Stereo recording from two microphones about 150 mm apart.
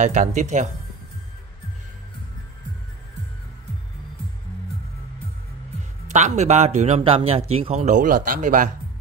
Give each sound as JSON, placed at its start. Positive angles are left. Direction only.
{"t": 0.0, "sound": "a man's voice", "side_deg": -55}
{"t": 6.0, "sound": "a man's voice", "side_deg": -50}